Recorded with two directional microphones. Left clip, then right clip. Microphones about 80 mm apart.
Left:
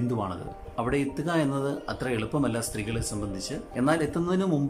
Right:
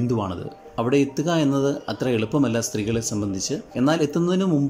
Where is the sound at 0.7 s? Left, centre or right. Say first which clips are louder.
Right 7 dB; right.